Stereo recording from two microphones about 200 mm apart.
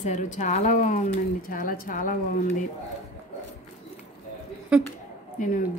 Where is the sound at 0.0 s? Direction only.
40° left (ahead or behind).